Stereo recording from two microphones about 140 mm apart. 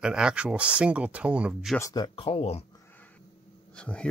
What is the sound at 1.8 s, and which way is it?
Speech, 25° left (ahead or behind).